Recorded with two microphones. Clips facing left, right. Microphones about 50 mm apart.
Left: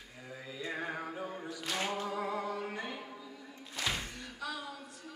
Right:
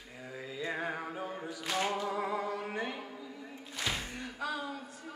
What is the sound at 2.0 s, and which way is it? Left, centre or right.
Humming, centre.